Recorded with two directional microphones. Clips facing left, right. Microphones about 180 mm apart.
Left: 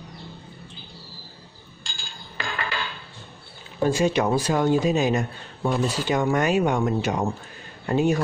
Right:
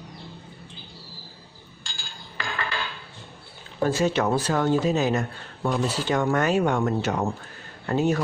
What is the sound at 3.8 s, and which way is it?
Speech, 15° left (ahead or behind).